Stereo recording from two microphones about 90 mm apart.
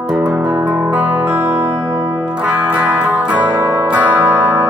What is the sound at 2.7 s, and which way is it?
Music, 20° right (ahead or behind).